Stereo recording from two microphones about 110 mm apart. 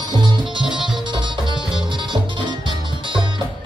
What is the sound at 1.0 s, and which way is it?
Music, 45° right (ahead or behind).